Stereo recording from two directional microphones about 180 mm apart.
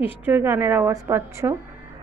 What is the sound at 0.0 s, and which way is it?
A woman's voice, 10° right (ahead or behind).